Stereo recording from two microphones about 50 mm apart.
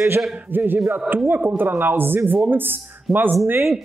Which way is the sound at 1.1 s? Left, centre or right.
Centre.